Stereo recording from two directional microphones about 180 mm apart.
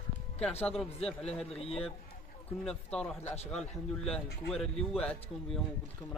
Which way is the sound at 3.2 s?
35° left (ahead or behind).